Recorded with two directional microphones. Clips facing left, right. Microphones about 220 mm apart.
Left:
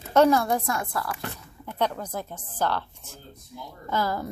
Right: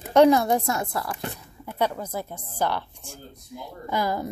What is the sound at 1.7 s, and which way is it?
A woman's voice, 10° right (ahead or behind).